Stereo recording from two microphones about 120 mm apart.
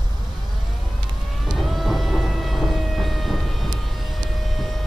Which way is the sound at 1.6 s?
Centre (ahead or behind).